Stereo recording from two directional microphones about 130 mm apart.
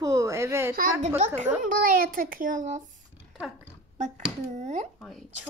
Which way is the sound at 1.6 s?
90° right.